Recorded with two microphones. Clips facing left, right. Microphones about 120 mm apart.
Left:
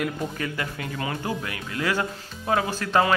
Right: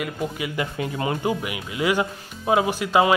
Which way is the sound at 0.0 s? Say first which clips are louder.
Right 1 dB; 10° right (ahead or behind).